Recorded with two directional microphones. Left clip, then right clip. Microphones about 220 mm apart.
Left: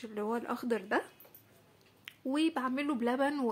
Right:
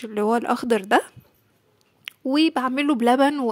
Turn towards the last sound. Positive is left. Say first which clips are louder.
# right 13 dB
turn(degrees=-40)  # may be behind; listen again after turning